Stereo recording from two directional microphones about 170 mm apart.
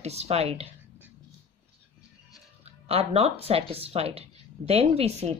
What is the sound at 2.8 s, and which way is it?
Speech, 35° right (ahead or behind).